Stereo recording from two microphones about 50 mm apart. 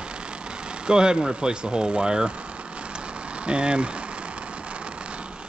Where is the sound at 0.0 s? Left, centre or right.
Centre.